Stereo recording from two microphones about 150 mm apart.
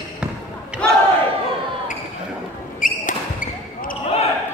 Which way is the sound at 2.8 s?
65° left (ahead or behind).